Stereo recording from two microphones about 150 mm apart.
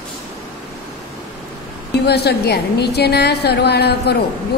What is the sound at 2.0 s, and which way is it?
A woman's voice, 90° left.